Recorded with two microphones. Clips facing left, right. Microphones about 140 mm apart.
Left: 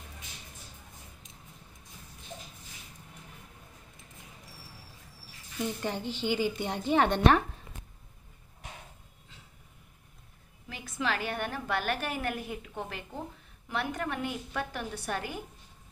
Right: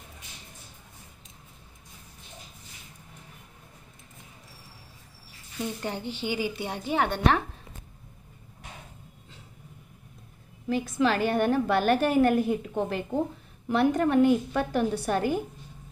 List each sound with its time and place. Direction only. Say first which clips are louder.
5.8 s a woman's voice: right 1 dB; 10° right (ahead or behind)
10.7 s a woman's voice: right 9 dB; 40° right (ahead or behind)